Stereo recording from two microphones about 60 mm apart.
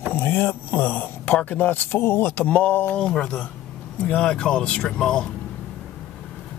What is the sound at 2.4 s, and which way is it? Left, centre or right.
Speech, left.